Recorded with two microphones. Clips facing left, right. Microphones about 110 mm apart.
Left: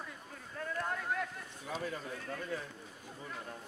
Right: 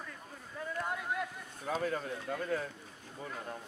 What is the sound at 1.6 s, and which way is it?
Speech, 55° right (ahead or behind).